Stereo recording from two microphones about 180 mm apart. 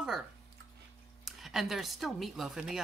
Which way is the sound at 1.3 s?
Centre (ahead or behind).